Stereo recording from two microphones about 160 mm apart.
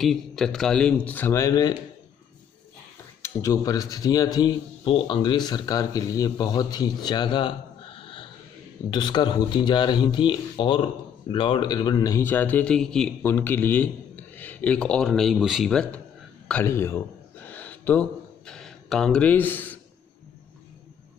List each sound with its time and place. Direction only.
0.0 s speech: centre (ahead or behind); by 1.8 s 20° left (ahead or behind)
3.2 s a man's voice: 20° left (ahead or behind); by 16.0 s 5° left (ahead or behind)
16.6 s speech: 15° left (ahead or behind)
17.5 s a sound: 10° left (ahead or behind)
18.5 s speech: 5° left (ahead or behind)